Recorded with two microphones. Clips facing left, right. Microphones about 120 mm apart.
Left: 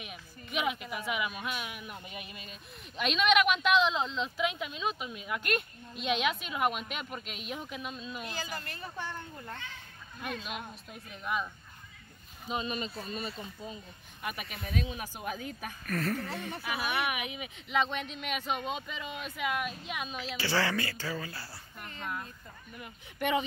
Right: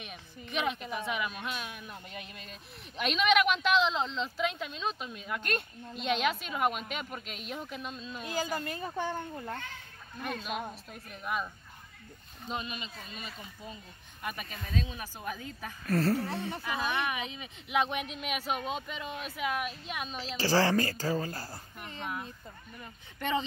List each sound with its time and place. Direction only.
0.0 s a sound: 5° left (ahead or behind)
0.9 s speech: 5° left (ahead or behind)
8.8 s speech: 45° right (ahead or behind)
10.7 s speech: centre (ahead or behind)
12.6 s speech: 40° left (ahead or behind)
14.2 s speech: 10° left (ahead or behind)
15.8 s a woman's voice: 30° right (ahead or behind)
16.3 s speech: 20° right (ahead or behind)
16.6 s speech: 10° left (ahead or behind)
17.6 s speech: 15° right (ahead or behind)
20.2 s a woman's voice: 35° right (ahead or behind)
22.8 s speech: 15° left (ahead or behind)